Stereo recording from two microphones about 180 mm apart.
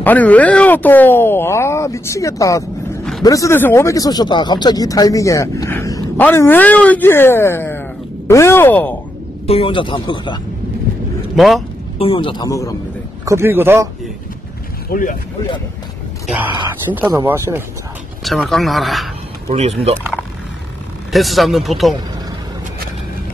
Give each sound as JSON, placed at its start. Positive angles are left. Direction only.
{"t": 0.0, "sound": "speech", "side_deg": 10}
{"t": 9.5, "sound": "speech", "side_deg": 30}
{"t": 11.3, "sound": "speech", "side_deg": 0}
{"t": 12.0, "sound": "speech", "side_deg": 30}
{"t": 13.2, "sound": "a man's voice", "side_deg": -15}
{"t": 14.9, "sound": "speech", "side_deg": 45}
{"t": 16.3, "sound": "a man's voice", "side_deg": -10}
{"t": 18.2, "sound": "speech", "side_deg": 0}
{"t": 19.5, "sound": "speech", "side_deg": -35}
{"t": 21.1, "sound": "speech", "side_deg": 0}